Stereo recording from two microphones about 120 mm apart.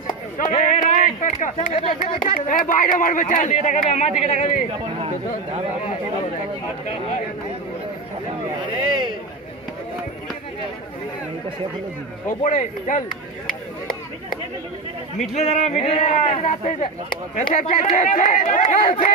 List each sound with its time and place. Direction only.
0.0 s speech: 90° left
1.7 s speech: 55° left (ahead or behind); by 4.1 s 85° left
4.3 s a man's voice: 70° left (ahead or behind)
12.4 s speech: 90° left
15.1 s a man's voice: 70° left (ahead or behind)
17.6 s speech: 90° left